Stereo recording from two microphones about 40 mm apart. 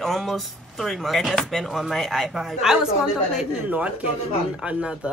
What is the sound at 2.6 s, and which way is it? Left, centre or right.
Speech, centre.